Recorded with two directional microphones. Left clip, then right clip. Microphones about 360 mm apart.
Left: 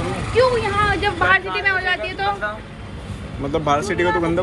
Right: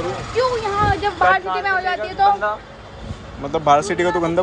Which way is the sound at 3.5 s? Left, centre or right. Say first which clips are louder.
Right 4 dB; centre.